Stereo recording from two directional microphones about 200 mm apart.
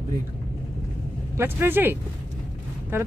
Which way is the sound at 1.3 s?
10° right (ahead or behind).